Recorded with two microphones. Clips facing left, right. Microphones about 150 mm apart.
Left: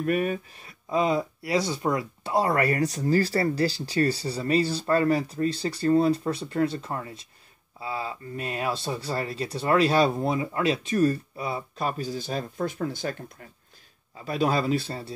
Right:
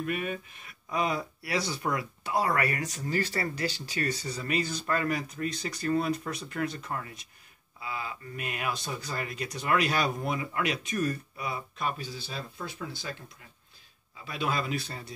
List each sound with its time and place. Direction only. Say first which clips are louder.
0.0 s speech: left 7 dB; 40° left (ahead or behind)
14.2 s speech: left 7 dB; 40° left (ahead or behind)